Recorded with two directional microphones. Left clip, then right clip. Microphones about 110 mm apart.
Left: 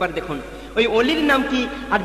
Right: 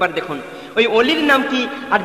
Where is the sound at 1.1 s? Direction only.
20° left (ahead or behind).